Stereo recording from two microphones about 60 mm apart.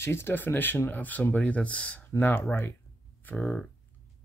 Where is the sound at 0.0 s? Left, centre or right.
Left.